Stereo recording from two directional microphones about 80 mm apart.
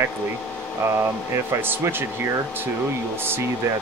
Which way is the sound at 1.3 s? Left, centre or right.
Right.